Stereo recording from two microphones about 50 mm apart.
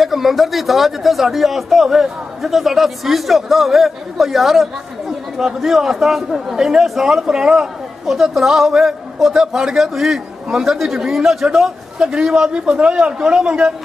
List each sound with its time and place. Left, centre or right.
0.0 s a man's voice: centre; by 12.9 s right
12.9 s speech: centre